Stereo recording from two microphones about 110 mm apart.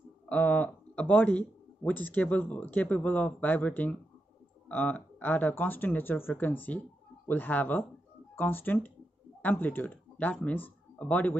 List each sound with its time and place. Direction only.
0.3 s speech: 15° left (ahead or behind)